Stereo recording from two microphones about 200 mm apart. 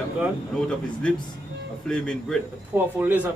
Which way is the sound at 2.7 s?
10° right (ahead or behind).